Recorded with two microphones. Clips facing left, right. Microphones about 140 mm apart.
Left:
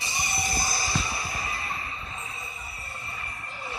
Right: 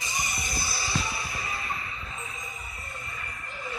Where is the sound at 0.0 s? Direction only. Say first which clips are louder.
Left 2 dB; 35° left (ahead or behind).